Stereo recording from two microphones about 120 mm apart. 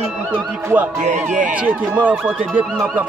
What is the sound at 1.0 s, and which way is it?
Speech, 85° right.